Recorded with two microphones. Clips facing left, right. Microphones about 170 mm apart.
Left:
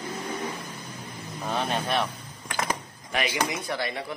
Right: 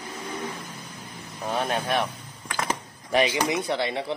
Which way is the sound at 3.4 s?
25° right (ahead or behind).